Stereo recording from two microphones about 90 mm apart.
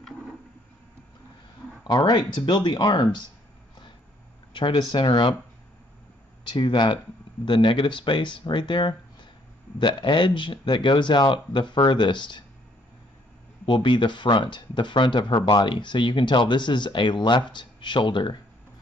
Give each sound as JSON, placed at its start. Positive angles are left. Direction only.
{"t": 1.9, "sound": "speech", "side_deg": 50}
{"t": 4.6, "sound": "speech", "side_deg": 60}
{"t": 6.5, "sound": "speech", "side_deg": 60}
{"t": 13.7, "sound": "speech", "side_deg": 60}